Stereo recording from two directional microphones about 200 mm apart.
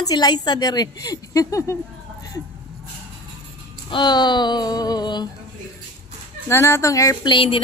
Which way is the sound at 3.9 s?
20° left (ahead or behind).